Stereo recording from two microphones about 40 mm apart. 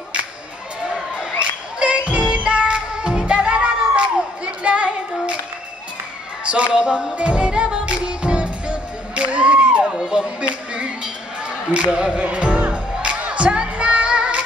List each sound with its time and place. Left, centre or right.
1.8 s music: right
4.6 s child singing: right
6.4 s a man's voice: right
7.2 s music: right
9.9 s a sound: centre
11.7 s music: right